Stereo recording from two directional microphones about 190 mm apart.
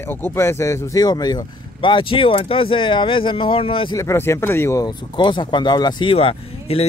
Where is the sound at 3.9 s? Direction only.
15° left (ahead or behind).